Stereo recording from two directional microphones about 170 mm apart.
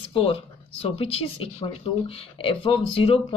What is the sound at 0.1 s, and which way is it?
Speech, 35° left (ahead or behind).